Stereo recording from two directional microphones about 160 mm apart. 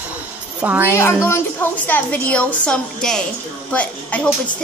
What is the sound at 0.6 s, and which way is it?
Speech, 10° right (ahead or behind).